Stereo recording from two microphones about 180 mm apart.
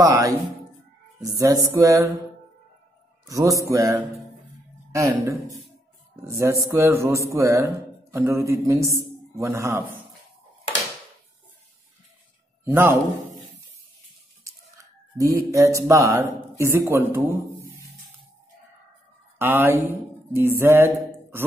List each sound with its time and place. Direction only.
0.0 s speech: 20° right (ahead or behind)
1.2 s music: 20° right (ahead or behind)
3.3 s a man's voice: 20° right (ahead or behind)
12.6 s speech: 15° right (ahead or behind)
15.1 s a man's voice: 20° right (ahead or behind)
19.3 s speech: 10° right (ahead or behind)